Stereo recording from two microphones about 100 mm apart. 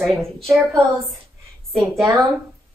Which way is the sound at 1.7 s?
Centre (ahead or behind).